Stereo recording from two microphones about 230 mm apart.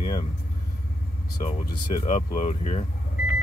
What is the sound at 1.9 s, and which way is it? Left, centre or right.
Speech, left.